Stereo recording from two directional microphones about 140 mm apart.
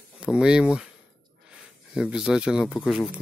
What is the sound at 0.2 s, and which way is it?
Speech, 5° right (ahead or behind).